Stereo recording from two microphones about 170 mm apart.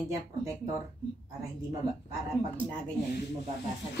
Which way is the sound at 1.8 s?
5° left (ahead or behind).